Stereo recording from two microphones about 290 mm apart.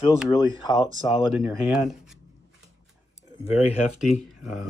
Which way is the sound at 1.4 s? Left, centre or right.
Centre.